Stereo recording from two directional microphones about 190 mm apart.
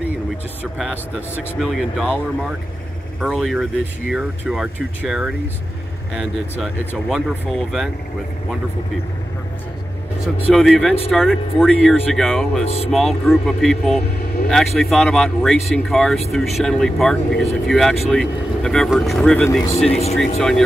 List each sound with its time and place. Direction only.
0.7 s speech: centre (ahead or behind)
7.1 s speech: centre (ahead or behind)
10.5 s speech: centre (ahead or behind)
12.6 s speech: 30° left (ahead or behind)
12.9 s speech: centre (ahead or behind)
19.7 s speech: 35° left (ahead or behind)
20.2 s speech: centre (ahead or behind)